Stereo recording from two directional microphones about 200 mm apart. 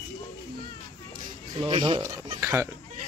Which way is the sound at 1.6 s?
25° right (ahead or behind).